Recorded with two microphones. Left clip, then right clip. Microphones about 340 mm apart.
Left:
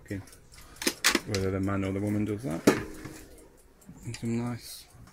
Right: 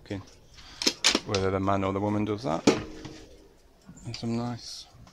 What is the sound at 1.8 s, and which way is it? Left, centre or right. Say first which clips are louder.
Speech: right 4 dB; right.